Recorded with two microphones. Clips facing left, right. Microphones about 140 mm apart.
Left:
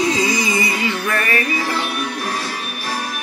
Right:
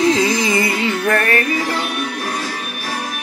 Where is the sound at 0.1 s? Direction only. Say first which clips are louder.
Right 3 dB; 55° right (ahead or behind).